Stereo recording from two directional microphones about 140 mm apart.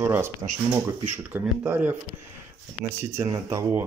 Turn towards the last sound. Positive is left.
turn(degrees=-20)  # may be behind; listen again after turning